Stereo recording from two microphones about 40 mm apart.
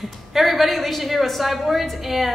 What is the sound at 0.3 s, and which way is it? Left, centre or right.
A woman's voice, centre.